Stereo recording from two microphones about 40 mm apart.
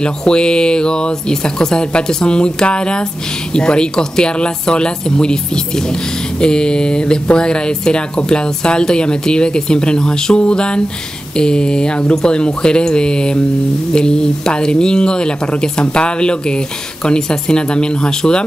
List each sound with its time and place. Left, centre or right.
0.0 s speech: left
6.4 s speech: left